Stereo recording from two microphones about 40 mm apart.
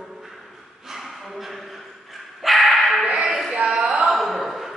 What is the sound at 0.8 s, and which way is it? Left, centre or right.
Dog, centre.